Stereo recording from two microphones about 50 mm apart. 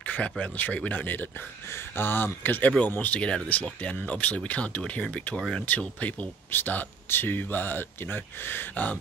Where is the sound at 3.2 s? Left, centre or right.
Centre.